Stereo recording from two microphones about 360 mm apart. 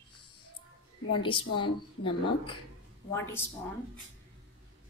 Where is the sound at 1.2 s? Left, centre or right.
Centre.